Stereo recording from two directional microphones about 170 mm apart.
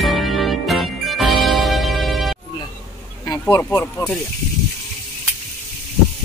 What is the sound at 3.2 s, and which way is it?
Speech, 15° left (ahead or behind).